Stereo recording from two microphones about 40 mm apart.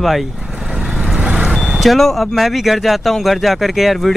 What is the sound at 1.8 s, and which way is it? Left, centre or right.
Speech, centre.